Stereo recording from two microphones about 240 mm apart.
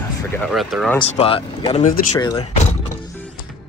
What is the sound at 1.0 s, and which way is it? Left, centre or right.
Speech, left.